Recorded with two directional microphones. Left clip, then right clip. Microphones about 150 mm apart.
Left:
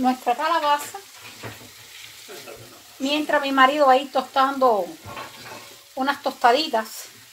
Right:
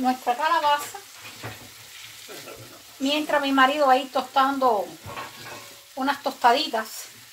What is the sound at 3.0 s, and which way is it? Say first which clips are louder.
A woman's voice: left 1 dB; 60° left (ahead or behind).